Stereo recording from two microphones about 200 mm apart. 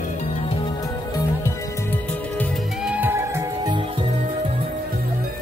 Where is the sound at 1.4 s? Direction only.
10° left (ahead or behind).